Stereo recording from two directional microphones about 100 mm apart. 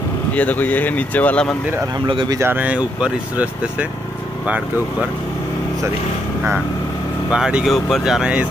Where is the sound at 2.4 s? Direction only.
20° right (ahead or behind).